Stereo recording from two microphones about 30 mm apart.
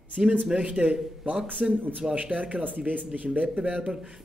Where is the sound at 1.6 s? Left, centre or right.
Right.